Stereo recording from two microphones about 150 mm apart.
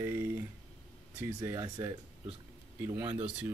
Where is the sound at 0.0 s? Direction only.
15° right (ahead or behind).